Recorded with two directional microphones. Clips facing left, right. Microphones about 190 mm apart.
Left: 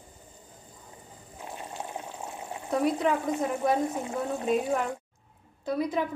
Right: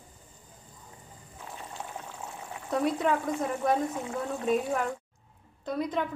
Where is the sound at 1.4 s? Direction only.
20° left (ahead or behind).